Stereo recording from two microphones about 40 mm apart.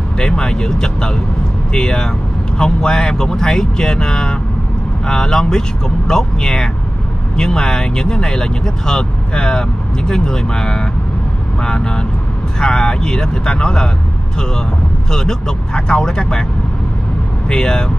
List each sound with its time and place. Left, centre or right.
0.2 s speech: centre
15.0 s speech: centre
17.5 s speech: centre